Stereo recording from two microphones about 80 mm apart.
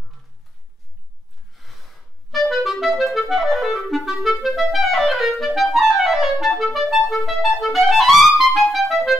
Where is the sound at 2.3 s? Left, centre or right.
Centre.